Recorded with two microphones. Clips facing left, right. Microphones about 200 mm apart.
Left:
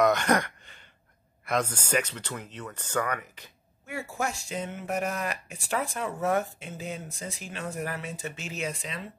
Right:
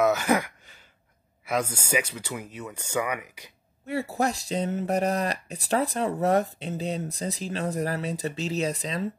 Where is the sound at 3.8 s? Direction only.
35° right (ahead or behind).